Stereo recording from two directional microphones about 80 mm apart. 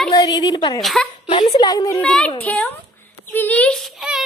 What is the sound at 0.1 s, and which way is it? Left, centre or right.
Speech, left.